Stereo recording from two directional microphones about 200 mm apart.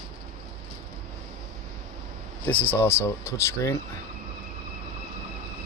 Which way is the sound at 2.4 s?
10° left (ahead or behind).